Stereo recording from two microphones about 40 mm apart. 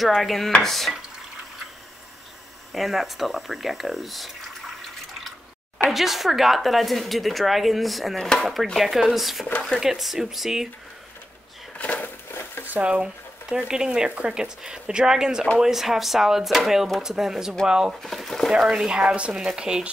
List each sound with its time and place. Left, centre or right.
0.0 s speech: centre
2.7 s speech: centre
5.9 s speech: centre
11.8 s a sound: left
12.3 s a sound: left
12.8 s speech: right
18.0 s speech: centre
18.5 s speech: centre
19.3 s speech: centre